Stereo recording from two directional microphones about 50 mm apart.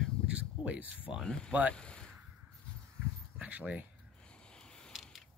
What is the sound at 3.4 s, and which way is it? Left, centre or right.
Speech, right.